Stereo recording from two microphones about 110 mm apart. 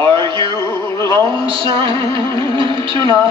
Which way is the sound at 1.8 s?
35° left (ahead or behind).